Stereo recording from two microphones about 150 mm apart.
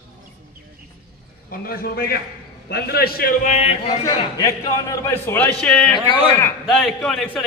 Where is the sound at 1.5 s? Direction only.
80° left.